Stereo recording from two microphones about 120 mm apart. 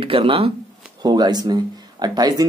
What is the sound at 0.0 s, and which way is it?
Speech, 50° right (ahead or behind).